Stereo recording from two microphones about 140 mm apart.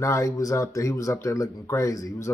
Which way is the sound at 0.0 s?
25° left (ahead or behind).